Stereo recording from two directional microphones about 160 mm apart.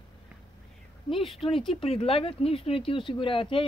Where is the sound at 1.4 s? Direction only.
30° left (ahead or behind).